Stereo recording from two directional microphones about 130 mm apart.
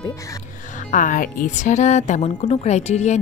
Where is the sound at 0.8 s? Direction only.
80° left; by 3.2 s 60° left (ahead or behind).